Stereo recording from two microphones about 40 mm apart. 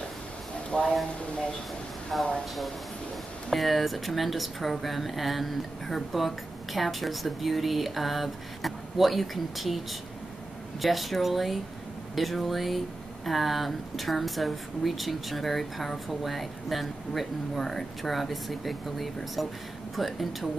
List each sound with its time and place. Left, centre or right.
0.7 s speech: left
2.1 s speech: centre
3.4 s speech: centre
10.8 s speech: centre